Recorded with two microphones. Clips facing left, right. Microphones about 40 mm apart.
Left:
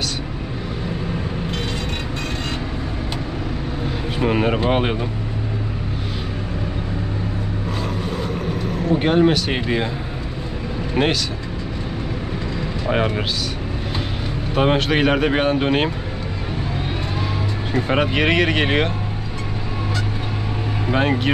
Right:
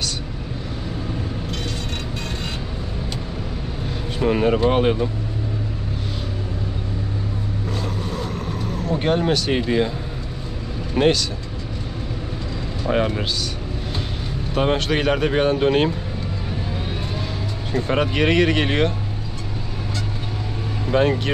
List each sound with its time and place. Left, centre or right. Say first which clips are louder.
4.2 s speech: right 1 dB; centre
7.8 s vehicle: left 2 dB; centre
11.0 s speech: right 2 dB; centre
12.8 s speech: even; centre
14.5 s speech: left 2 dB; centre
17.7 s speech: left 1 dB; centre
20.8 s speech: right 1 dB; centre